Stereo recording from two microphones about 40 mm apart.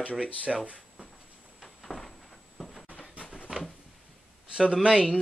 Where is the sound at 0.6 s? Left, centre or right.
Right.